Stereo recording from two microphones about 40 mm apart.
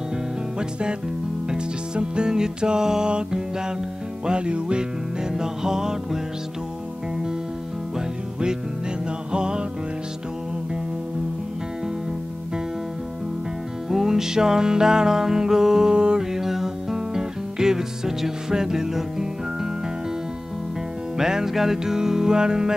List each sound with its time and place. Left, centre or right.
0.6 s music: right
9.3 s music: right
13.8 s music: centre
21.2 s music: centre